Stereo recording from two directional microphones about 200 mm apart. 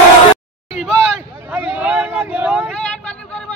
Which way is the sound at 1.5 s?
10° right (ahead or behind).